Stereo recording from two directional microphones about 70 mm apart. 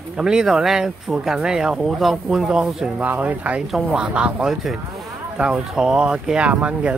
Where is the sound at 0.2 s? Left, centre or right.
Centre.